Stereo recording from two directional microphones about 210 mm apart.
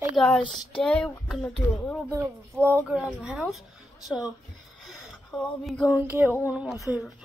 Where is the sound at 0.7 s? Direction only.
5° left (ahead or behind).